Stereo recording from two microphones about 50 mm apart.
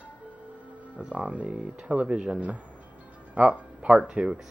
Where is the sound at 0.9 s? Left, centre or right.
Right.